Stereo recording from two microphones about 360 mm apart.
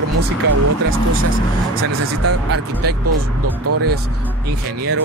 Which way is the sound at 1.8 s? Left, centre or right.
Right.